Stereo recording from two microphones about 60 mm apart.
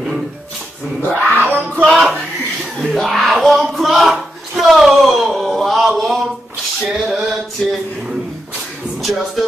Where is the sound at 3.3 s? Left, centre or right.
Centre.